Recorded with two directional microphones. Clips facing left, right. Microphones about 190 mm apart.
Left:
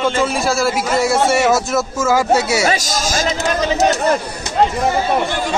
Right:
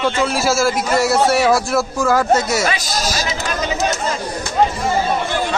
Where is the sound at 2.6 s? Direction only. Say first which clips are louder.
Left 2 dB; 45° left (ahead or behind).